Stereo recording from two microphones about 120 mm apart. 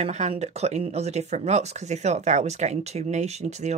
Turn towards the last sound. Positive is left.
turn(degrees=-70)  # may be behind; listen again after turning